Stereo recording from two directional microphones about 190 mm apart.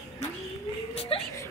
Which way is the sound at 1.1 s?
30° left (ahead or behind).